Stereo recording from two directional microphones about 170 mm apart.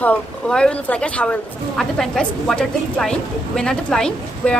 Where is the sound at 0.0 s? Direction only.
5° left (ahead or behind).